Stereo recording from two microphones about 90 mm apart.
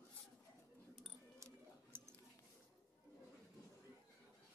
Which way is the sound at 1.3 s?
30° right (ahead or behind).